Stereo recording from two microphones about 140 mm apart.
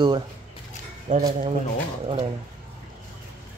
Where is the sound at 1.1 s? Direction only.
65° right (ahead or behind).